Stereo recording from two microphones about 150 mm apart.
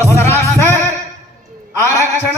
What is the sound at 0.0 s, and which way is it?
Music, 15° left (ahead or behind).